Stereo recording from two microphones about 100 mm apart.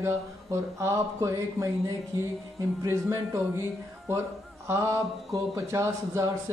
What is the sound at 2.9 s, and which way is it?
Speech, 30° right (ahead or behind).